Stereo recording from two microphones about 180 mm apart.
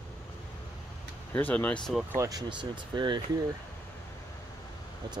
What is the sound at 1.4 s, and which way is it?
Speech, 10° left (ahead or behind).